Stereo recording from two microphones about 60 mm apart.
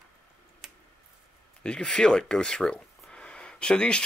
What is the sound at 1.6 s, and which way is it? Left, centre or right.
Speech, centre.